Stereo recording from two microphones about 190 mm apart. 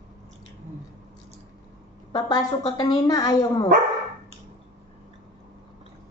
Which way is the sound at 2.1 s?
25° left (ahead or behind).